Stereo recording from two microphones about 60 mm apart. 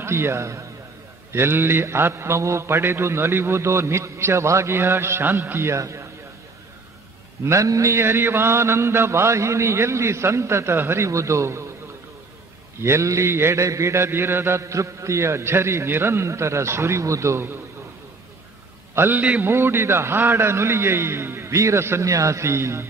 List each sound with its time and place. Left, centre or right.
0.0 s a man's voice: right
1.3 s a man's voice: right
5.7 s a man's voice: right
7.4 s a man's voice: right
7.9 s a man's voice: right
12.8 s a man's voice: right
14.6 s a man's voice: right
18.9 s a man's voice: right
22.1 s a man's voice: right